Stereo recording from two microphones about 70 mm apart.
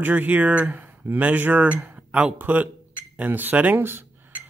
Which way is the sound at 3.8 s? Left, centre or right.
Right.